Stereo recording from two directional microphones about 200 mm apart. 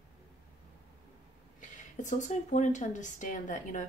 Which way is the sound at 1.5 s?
40° left (ahead or behind).